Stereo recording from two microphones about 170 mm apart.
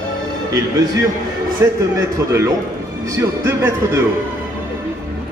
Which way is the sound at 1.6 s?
15° right (ahead or behind).